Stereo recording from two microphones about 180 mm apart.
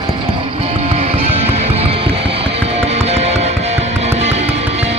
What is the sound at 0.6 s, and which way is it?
Music, 35° right (ahead or behind).